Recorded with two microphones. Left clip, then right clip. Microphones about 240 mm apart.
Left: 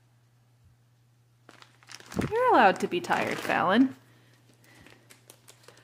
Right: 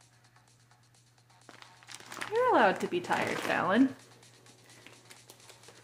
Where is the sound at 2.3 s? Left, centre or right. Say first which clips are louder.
Left 4 dB; left.